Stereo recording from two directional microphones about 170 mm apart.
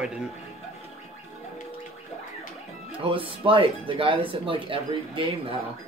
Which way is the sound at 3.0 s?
30° right (ahead or behind).